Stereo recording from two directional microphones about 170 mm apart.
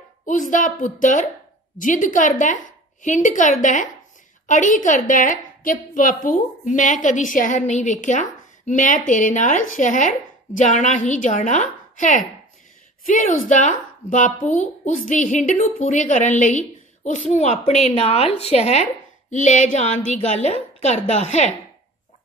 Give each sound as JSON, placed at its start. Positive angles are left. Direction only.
{"t": 0.2, "sound": "a woman's voice", "side_deg": 50}